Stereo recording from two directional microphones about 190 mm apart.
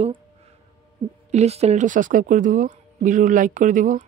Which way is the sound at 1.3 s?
35° right (ahead or behind).